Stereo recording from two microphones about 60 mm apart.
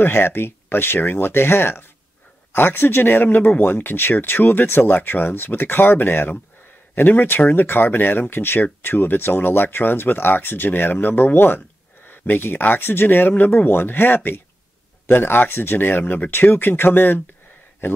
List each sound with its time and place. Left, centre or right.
0.0 s speech: left